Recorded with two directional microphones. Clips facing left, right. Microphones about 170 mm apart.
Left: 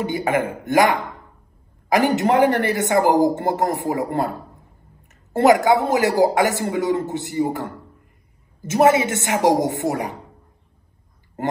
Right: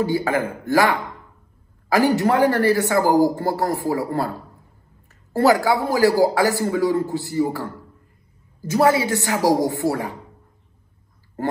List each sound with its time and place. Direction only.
0.0 s a man's voice: 20° left (ahead or behind)
5.3 s a man's voice: 20° left (ahead or behind)